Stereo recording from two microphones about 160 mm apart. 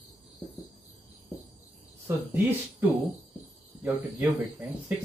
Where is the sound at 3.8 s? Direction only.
10° right (ahead or behind).